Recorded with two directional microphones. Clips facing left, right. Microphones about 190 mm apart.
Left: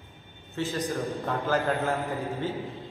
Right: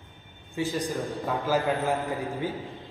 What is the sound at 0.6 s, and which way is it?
A man's voice, 10° right (ahead or behind).